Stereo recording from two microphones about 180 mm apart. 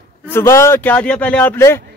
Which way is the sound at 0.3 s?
15° left (ahead or behind).